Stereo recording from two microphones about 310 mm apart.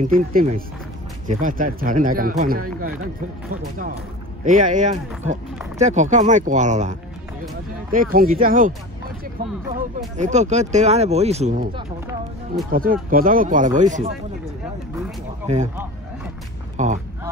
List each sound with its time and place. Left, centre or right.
0.0 s speech: right
4.5 s speech: right
9.8 s speech: right
12.7 s speech: right
15.4 s speech: right
16.7 s a sound: right